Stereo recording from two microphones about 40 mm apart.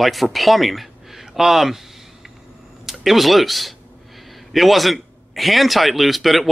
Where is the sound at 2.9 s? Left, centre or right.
Centre.